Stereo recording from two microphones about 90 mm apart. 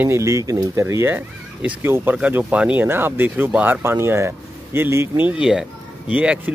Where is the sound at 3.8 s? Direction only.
30° right (ahead or behind).